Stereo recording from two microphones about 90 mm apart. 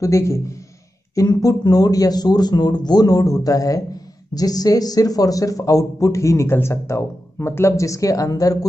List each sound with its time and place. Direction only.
0.0 s a man's voice: 35° left (ahead or behind)